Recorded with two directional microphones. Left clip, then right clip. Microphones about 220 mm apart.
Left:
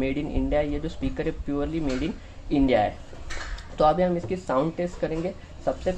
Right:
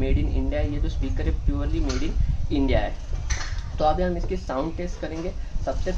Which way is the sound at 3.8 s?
35° left (ahead or behind).